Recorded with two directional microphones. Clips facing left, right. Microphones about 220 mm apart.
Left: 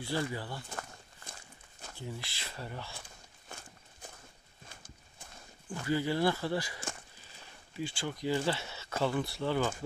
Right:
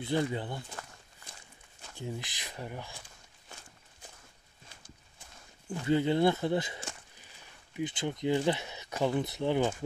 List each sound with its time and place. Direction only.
0.0 s speech: 20° right (ahead or behind)
2.0 s speech: 20° right (ahead or behind)
3.4 s walk: 50° left (ahead or behind)
5.7 s speech: 20° right (ahead or behind)